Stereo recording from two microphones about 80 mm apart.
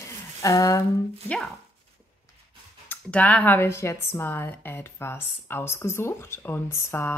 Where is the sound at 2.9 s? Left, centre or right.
Centre.